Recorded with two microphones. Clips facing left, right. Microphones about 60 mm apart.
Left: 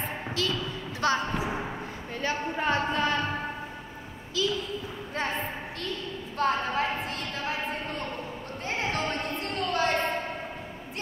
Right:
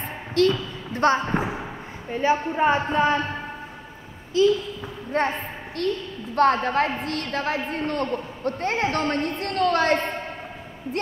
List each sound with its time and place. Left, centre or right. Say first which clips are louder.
0.3 s a sound: right 12 dB; right
1.1 s speech: right 5 dB; right
2.0 s speech: right 9 dB; right
4.4 s a woman's voice: right 11 dB; right
5.1 s a woman's voice: right 9 dB; right
5.8 s a woman's voice: right 11 dB; right